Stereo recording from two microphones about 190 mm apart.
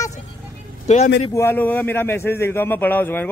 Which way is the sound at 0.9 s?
35° left (ahead or behind).